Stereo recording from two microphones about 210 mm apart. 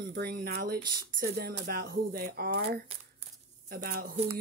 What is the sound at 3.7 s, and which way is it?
Speech, 45° right (ahead or behind).